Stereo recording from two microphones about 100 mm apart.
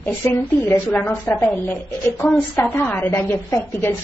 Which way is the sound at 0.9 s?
20° left (ahead or behind).